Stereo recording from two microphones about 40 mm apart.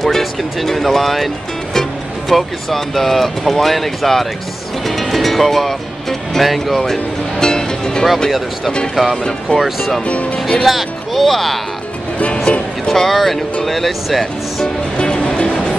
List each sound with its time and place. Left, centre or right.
0.0 s speech: centre
4.8 s music: centre
6.8 s music: centre
8.9 s speech: centre
10.0 s speech: left
10.6 s speech: centre
12.5 s music: left
12.8 s speech: centre
15.0 s music: left